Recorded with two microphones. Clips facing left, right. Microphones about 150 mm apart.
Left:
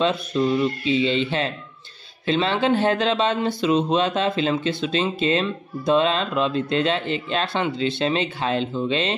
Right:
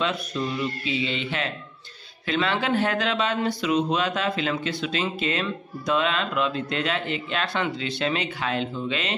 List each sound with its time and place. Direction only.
0.0 s a man's voice: 25° left (ahead or behind)